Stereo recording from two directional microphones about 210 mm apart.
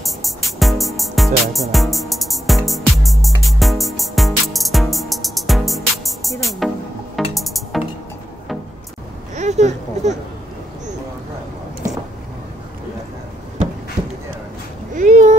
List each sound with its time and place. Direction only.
0.0 s music: centre (ahead or behind)
9.3 s speech: 35° right (ahead or behind)
15.0 s a sound: 35° right (ahead or behind)